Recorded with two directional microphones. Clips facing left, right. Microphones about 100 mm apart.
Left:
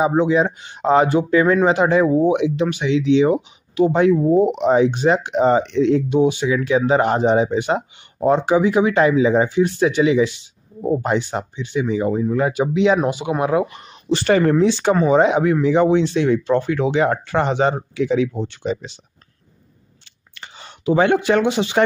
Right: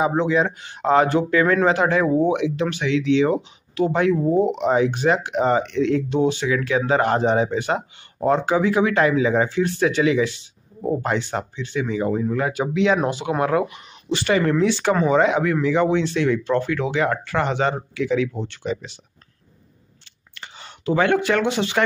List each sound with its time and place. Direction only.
0.0 s speech: 20° left (ahead or behind)
13.7 s speech: 35° left (ahead or behind)
20.3 s speech: 20° left (ahead or behind)